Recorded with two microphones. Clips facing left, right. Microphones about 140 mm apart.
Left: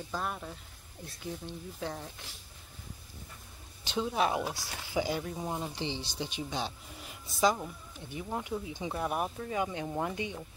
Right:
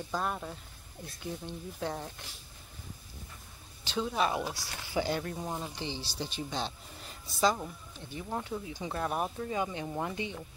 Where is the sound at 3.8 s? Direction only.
10° left (ahead or behind).